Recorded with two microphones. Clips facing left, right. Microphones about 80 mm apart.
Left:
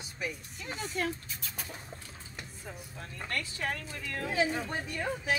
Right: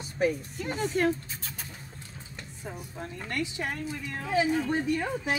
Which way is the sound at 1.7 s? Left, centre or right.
Centre.